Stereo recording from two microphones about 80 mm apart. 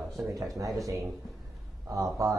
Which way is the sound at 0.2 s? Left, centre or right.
Right.